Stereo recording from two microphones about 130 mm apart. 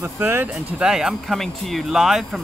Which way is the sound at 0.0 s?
15° right (ahead or behind).